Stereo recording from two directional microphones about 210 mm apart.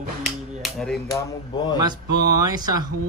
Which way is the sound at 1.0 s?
20° left (ahead or behind).